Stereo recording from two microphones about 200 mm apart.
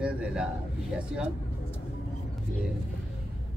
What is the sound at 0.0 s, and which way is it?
Speech, 5° right (ahead or behind).